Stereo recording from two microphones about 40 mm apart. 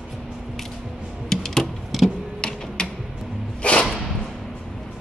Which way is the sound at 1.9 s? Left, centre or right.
Centre.